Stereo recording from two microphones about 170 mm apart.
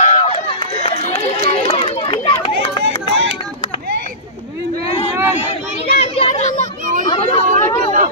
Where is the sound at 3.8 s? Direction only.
65° right (ahead or behind).